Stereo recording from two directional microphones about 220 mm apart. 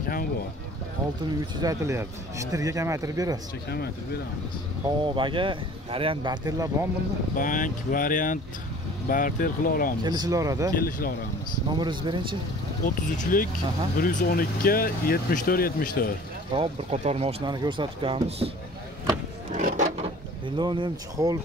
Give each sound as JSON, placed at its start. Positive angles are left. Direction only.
{"t": 1.6, "sound": "speech", "side_deg": -15}
{"t": 5.0, "sound": "speech", "side_deg": -20}
{"t": 7.3, "sound": "speech", "side_deg": 35}
{"t": 10.0, "sound": "speech", "side_deg": -20}
{"t": 10.8, "sound": "speech", "side_deg": 40}
{"t": 11.7, "sound": "speech", "side_deg": -20}
{"t": 12.8, "sound": "speech", "side_deg": 35}
{"t": 16.5, "sound": "speech", "side_deg": -30}
{"t": 19.5, "sound": "a sound", "side_deg": -35}
{"t": 20.4, "sound": "speech", "side_deg": -20}